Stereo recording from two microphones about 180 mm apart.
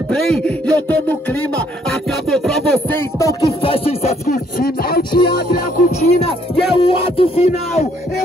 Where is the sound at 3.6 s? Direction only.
30° left (ahead or behind).